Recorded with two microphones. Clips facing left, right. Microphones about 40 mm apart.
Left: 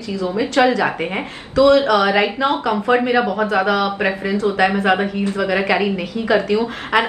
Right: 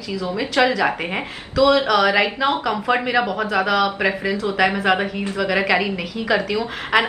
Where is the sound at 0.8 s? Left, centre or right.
Centre.